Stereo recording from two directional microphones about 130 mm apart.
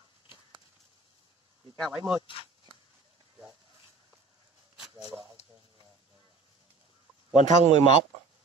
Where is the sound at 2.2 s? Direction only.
45° left (ahead or behind).